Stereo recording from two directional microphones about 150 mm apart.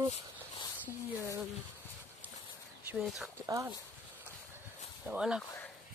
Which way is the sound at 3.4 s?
20° right (ahead or behind).